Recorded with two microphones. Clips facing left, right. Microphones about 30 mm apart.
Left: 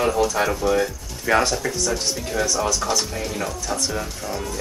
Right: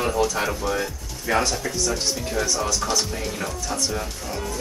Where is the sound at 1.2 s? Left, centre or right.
Centre.